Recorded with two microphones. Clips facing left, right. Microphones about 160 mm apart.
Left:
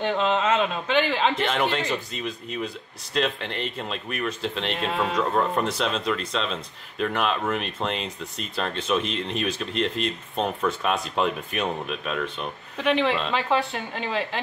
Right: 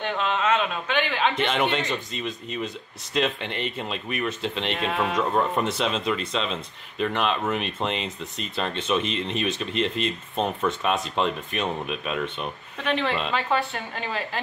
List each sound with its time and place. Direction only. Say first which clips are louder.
0.2 s a man's voice: even; 30° left (ahead or behind)
1.4 s speech: even; centre (ahead or behind)